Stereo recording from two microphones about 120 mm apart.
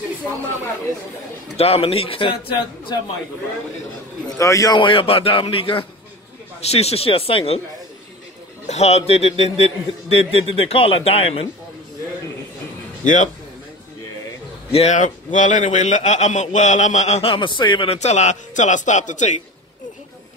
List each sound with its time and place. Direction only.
1.6 s speech: 55° left (ahead or behind)
4.3 s a man's voice: 25° left (ahead or behind)
4.7 s speech: 45° left (ahead or behind)
6.7 s a man's voice: 60° left (ahead or behind)
8.6 s a man's voice: 65° left (ahead or behind)
13.0 s speech: 90° left
14.7 s a man's voice: 65° left (ahead or behind)
17.3 s speech: 40° left (ahead or behind)
17.9 s speech: 70° left (ahead or behind); by 19.4 s 90° left